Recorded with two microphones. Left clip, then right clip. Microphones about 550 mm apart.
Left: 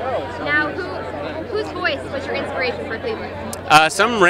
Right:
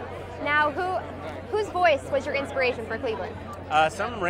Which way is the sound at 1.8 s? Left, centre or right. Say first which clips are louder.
Even; centre.